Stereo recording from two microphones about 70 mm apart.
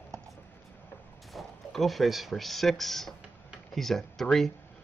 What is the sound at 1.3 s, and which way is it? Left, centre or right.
Speech, centre.